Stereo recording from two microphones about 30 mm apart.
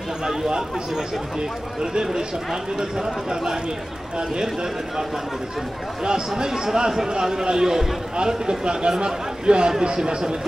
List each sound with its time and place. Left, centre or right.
1.8 s a man's voice: right
6.0 s a man's voice: right